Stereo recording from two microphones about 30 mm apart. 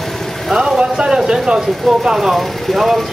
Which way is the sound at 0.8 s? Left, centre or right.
Right.